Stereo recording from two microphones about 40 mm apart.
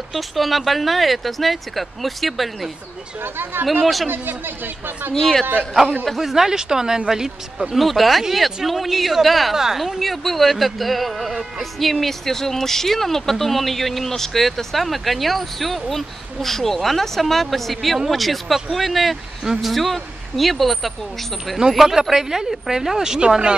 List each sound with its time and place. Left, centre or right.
0.1 s speech: centre
3.2 s speech: right
3.8 s speech: centre
5.1 s a man's voice: centre
6.0 s a woman's voice: centre
21.5 s a woman's voice: centre